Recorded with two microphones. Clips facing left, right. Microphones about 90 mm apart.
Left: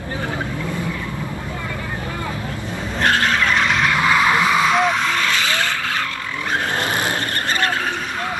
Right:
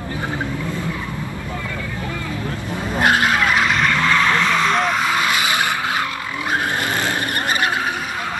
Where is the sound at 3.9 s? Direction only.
10° left (ahead or behind); by 6.0 s 15° right (ahead or behind).